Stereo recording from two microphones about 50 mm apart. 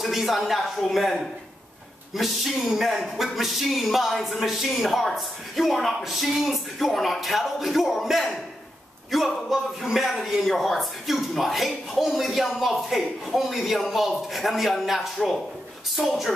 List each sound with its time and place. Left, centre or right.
0.0 s speech: centre